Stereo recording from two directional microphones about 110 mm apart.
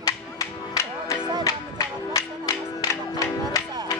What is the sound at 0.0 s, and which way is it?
Music, 30° left (ahead or behind).